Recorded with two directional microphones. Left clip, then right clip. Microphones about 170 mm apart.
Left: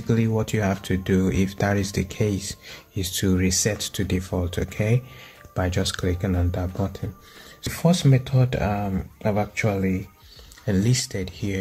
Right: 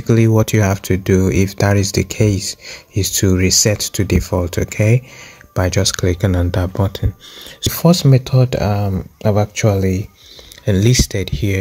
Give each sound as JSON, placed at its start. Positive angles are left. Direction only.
{"t": 0.0, "sound": "speech", "side_deg": -40}